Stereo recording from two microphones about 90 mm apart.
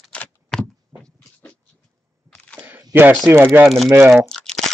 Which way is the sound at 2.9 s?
20° right (ahead or behind).